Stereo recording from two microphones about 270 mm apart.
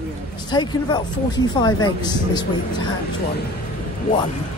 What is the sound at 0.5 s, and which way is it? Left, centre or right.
Speech, centre.